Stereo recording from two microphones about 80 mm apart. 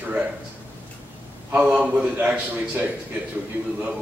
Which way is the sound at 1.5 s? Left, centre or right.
Centre.